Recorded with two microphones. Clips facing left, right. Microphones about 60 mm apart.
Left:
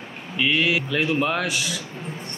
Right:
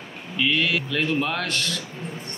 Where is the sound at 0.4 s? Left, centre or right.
Centre.